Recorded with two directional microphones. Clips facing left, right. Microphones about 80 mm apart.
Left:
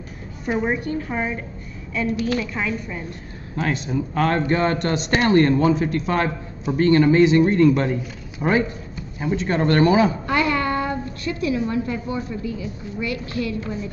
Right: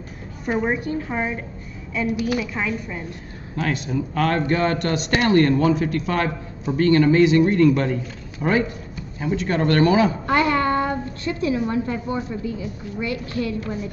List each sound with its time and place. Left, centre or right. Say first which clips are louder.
0.5 s a woman's voice: even; centre
3.5 s a man's voice: even; left
10.2 s a woman's voice: right 2 dB; right